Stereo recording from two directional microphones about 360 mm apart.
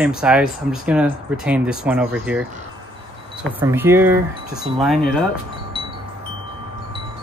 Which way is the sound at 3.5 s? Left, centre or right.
Centre.